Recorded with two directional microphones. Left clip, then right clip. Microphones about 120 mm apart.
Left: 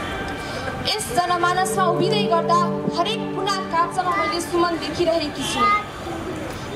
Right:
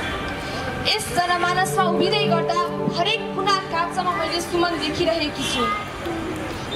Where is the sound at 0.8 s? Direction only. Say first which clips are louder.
Even; 20° left (ahead or behind).